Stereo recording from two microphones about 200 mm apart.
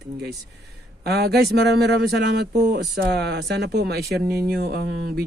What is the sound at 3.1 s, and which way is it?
Speech, 55° right (ahead or behind).